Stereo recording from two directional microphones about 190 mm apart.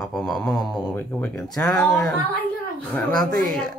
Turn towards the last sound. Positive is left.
turn(degrees=5)  # may be behind; listen again after turning